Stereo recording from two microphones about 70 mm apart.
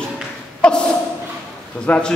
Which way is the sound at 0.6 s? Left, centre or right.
Centre.